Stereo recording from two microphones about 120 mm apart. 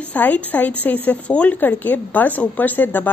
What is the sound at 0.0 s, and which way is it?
Speech, 15° left (ahead or behind).